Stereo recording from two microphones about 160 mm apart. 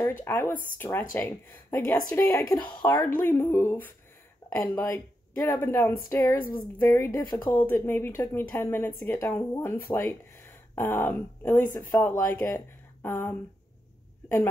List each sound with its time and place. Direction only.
0.2 s speech: 15° left (ahead or behind)
7.5 s a woman's voice: 15° left (ahead or behind)